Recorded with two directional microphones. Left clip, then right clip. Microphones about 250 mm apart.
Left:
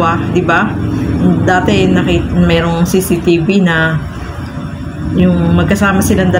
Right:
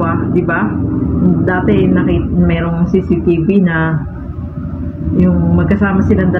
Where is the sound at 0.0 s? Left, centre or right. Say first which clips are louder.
Left 3 dB; centre.